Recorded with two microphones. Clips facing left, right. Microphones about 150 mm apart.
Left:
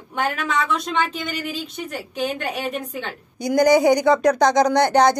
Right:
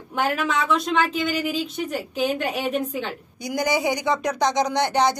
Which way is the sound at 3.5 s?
40° left (ahead or behind).